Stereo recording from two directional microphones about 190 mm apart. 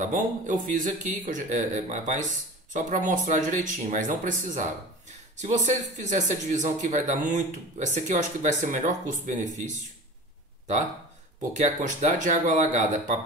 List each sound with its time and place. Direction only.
0.0 s speech: 40° right (ahead or behind)
11.5 s speech: 40° right (ahead or behind)